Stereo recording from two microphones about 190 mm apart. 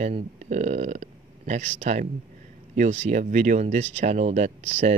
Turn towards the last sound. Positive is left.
turn(degrees=-35)  # may be behind; listen again after turning